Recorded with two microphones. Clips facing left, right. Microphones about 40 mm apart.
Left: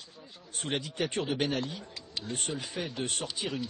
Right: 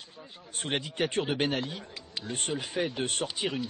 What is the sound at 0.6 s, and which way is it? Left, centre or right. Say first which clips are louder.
A man's voice: right 2 dB; right.